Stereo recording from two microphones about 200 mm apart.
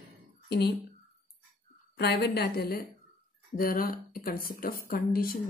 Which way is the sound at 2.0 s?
55° left (ahead or behind).